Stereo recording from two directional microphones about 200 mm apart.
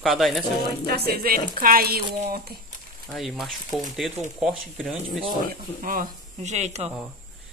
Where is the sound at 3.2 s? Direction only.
Centre (ahead or behind).